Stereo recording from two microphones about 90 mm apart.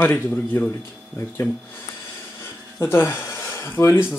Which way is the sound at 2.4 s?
25° left (ahead or behind).